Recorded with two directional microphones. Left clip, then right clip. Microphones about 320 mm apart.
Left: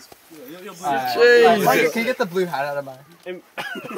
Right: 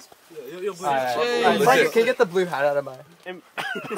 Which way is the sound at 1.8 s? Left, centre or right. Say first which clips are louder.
Right 2 dB; centre.